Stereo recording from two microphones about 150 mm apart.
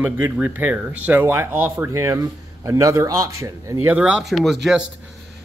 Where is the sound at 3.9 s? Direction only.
5° right (ahead or behind).